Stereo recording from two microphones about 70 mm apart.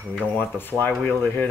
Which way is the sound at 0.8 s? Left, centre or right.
Left.